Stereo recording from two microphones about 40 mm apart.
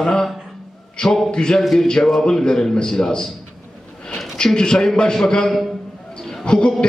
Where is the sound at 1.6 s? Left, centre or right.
Centre.